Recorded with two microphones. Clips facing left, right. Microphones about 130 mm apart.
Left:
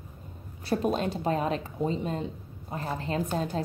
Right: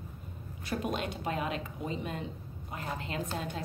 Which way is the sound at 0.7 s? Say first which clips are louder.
Left 7 dB; 35° left (ahead or behind).